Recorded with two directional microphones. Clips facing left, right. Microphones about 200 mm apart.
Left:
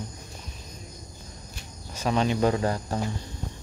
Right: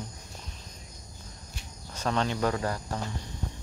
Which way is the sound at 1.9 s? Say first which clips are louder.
Left 4 dB; 10° left (ahead or behind).